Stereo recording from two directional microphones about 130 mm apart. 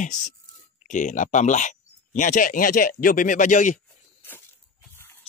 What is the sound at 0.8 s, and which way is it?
Speech, 75° left (ahead or behind).